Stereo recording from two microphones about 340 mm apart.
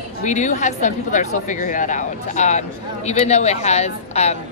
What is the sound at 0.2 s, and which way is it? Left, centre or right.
Speech, left.